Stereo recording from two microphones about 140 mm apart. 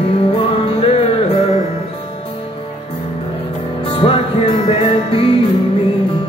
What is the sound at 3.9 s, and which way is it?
Music, 40° left (ahead or behind).